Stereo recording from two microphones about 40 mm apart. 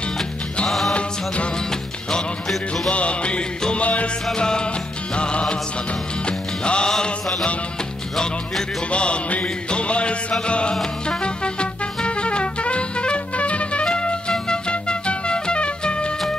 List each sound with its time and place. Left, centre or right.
0.7 s music: centre
0.9 s music: left
2.9 s music: left
4.4 s music: left
6.9 s mantra: centre
8.9 s music: left